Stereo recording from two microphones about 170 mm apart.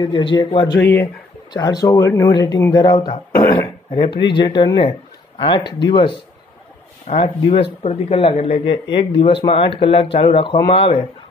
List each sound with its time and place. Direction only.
0.0 s speech: 30° left (ahead or behind)
0.7 s speech: 10° left (ahead or behind)
1.5 s speech: 25° left (ahead or behind)
7.1 s a man's voice: 40° left (ahead or behind)